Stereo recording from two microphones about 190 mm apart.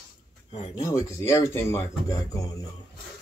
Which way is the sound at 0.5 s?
30° left (ahead or behind).